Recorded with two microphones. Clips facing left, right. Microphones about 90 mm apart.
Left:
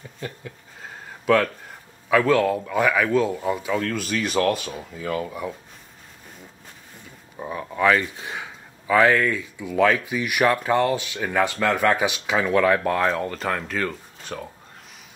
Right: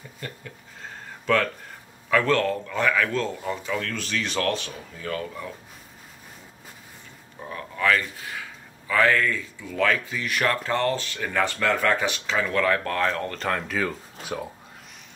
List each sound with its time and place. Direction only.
1.2 s speech: 10° left (ahead or behind)
7.3 s speech: 20° left (ahead or behind); by 14.5 s 5° right (ahead or behind)